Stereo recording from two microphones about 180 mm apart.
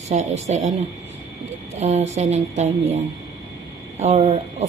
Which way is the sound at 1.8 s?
40° right (ahead or behind).